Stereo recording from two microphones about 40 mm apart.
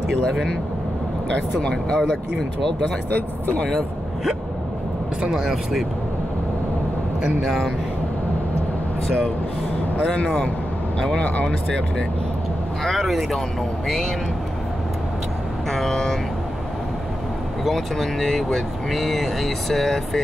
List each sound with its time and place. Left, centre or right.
1.3 s speech: left
2.0 s speech: centre
3.1 s speech: left
5.3 s speech: centre
7.4 s speech: centre
10.2 s speech: centre
11.1 s speech: left
12.8 s speech: centre
15.7 s speech: centre
17.6 s speech: centre